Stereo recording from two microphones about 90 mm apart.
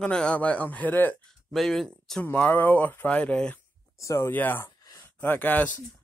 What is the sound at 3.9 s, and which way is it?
Speech, 35° left (ahead or behind).